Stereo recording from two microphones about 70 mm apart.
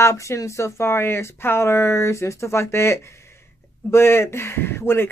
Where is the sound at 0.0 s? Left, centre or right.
Left.